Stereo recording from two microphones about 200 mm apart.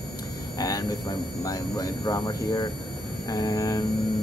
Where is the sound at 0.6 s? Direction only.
15° left (ahead or behind).